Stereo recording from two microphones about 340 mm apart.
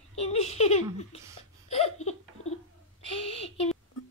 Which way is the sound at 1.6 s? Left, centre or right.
Centre.